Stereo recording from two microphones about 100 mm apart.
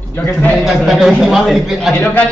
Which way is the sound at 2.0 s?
25° left (ahead or behind).